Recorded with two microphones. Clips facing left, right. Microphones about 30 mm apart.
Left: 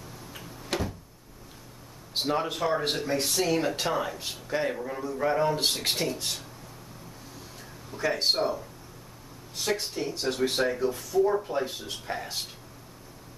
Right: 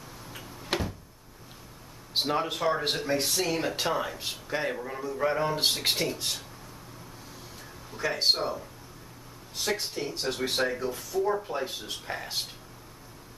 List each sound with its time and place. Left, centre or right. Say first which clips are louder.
0.3 s a sound: even; centre
0.7 s cupboard open or close: even; centre
2.1 s speech: even; centre
7.9 s speech: even; centre